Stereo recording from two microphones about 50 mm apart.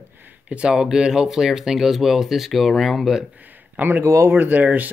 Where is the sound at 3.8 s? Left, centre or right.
Right.